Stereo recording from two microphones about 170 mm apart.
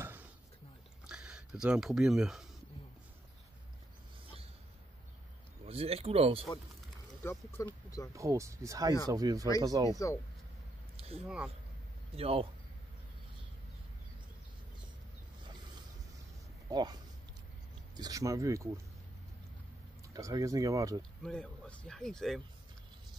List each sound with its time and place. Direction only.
0.0 s dishes: 10° right (ahead or behind)
1.0 s speech: 5° right (ahead or behind)
5.7 s speech: 35° right (ahead or behind)
7.2 s speech: 15° left (ahead or behind)
8.1 s speech: 20° right (ahead or behind)
9.8 s speech: 20° left (ahead or behind)
11.2 s speech: 5° right (ahead or behind)
12.2 s speech: 35° right (ahead or behind)
16.6 s speech: 25° right (ahead or behind)
20.1 s speech: 20° right (ahead or behind)
21.2 s speech: 5° left (ahead or behind)